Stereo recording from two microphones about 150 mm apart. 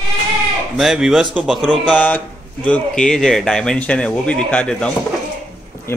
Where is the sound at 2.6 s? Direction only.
5° left (ahead or behind).